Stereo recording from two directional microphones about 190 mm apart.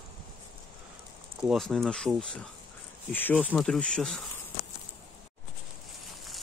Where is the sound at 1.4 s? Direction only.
Centre (ahead or behind).